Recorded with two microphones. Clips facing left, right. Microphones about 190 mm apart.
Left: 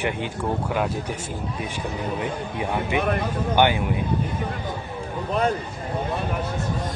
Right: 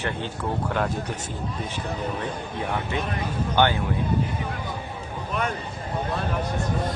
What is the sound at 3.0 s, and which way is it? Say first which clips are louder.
Speech: left 6 dB; 60° left (ahead or behind).